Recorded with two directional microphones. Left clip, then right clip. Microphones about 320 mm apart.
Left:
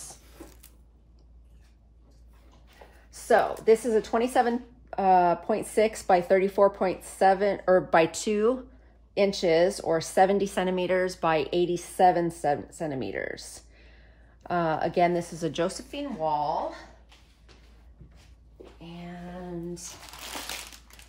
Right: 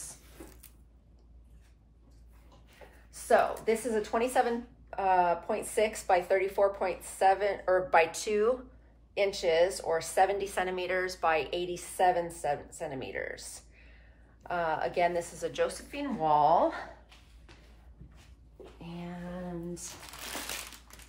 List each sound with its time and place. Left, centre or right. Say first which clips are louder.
3.1 s speech: left 3 dB; left
15.9 s a woman's voice: right 1 dB; centre